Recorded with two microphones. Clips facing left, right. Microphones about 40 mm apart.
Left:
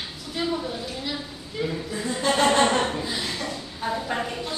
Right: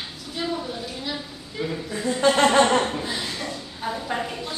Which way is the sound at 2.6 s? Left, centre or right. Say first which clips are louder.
Right 2 dB; centre.